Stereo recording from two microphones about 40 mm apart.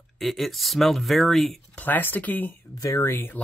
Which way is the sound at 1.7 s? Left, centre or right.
Left.